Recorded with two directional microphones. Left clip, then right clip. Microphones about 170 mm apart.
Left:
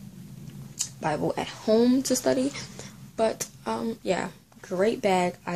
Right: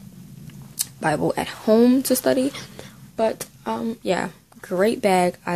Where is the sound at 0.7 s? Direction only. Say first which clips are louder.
Right 6 dB; 40° right (ahead or behind).